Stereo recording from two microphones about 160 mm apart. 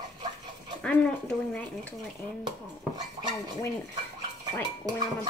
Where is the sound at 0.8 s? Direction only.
5° left (ahead or behind).